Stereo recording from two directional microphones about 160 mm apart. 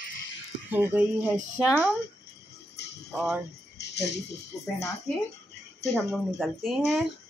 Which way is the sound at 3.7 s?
90° left.